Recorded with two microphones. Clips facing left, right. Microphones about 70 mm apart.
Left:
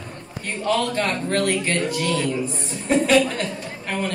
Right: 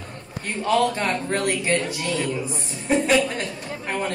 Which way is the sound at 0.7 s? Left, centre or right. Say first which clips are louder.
Right 1 dB; centre.